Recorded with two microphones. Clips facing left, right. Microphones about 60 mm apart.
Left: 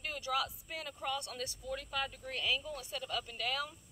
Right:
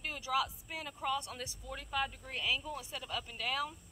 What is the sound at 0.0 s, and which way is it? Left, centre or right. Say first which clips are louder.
Speech: right 1 dB; centre.